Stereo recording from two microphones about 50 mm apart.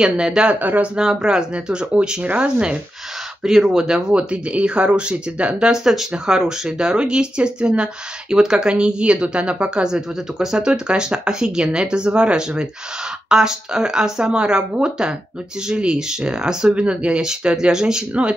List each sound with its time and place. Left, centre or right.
0.0 s speech: centre
0.6 s speech: right
0.9 s speech: centre
3.4 s speech: centre